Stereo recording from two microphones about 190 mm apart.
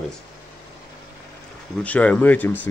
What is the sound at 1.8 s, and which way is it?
Speech, 5° left (ahead or behind).